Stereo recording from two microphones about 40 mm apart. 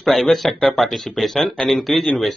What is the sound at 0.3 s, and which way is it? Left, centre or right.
Speech, centre.